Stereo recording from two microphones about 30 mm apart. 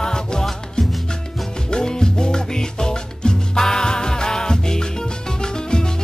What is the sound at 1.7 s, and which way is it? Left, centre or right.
Music, left.